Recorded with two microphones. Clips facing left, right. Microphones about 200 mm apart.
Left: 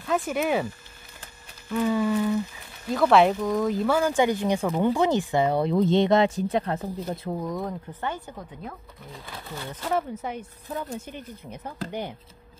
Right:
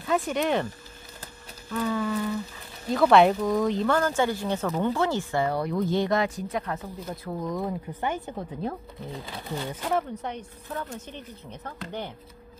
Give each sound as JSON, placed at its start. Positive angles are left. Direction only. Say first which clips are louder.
{"t": 0.0, "sound": "speech", "louder": "even", "side_deg": 0}
{"t": 1.7, "sound": "speech", "louder": "left 4 dB", "side_deg": 15}
{"t": 2.9, "sound": "speech", "louder": "even", "side_deg": 0}
{"t": 7.4, "sound": "speech", "louder": "right 3 dB", "side_deg": 0}
{"t": 8.0, "sound": "speech", "louder": "right 2 dB", "side_deg": -20}
{"t": 8.4, "sound": "speech", "louder": "right 7 dB", "side_deg": -30}
{"t": 9.2, "sound": "speech", "louder": "right 3 dB", "side_deg": -15}
{"t": 9.8, "sound": "speech", "louder": "left 2 dB", "side_deg": 5}
{"t": 10.7, "sound": "speech", "louder": "left 2 dB", "side_deg": 15}